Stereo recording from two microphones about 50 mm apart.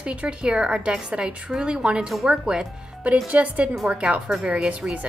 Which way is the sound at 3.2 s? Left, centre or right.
Right.